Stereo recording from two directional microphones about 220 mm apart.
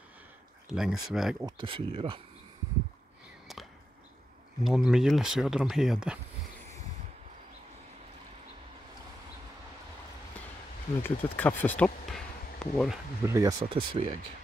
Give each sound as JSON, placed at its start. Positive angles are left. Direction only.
{"t": 0.7, "sound": "speech", "side_deg": -5}
{"t": 1.4, "sound": "speech", "side_deg": -20}
{"t": 4.6, "sound": "speech", "side_deg": 0}
{"t": 11.0, "sound": "speech", "side_deg": 10}
{"t": 13.2, "sound": "speech", "side_deg": -15}